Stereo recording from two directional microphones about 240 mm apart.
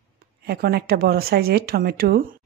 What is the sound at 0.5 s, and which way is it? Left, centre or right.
A woman's voice, right.